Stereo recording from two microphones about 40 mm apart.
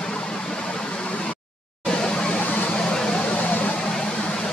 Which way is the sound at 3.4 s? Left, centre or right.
Left.